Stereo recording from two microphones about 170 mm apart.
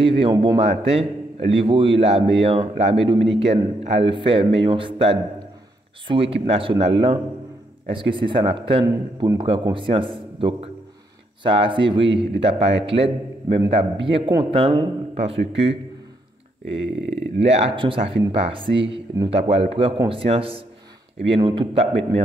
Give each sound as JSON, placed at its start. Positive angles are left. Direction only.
{"t": 0.0, "sound": "a man's voice", "side_deg": -30}
{"t": 8.8, "sound": "speech", "side_deg": -15}
{"t": 9.4, "sound": "a man's voice", "side_deg": -30}
{"t": 16.6, "sound": "speech", "side_deg": -90}
{"t": 17.4, "sound": "a man's voice", "side_deg": -35}